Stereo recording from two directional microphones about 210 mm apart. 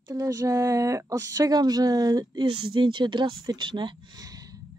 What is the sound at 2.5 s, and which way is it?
Speech, 90° right.